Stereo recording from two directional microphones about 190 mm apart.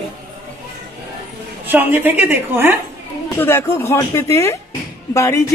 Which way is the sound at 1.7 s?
10° right (ahead or behind).